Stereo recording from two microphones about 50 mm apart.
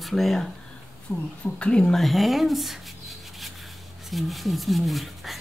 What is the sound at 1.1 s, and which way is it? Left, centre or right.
Speech, left.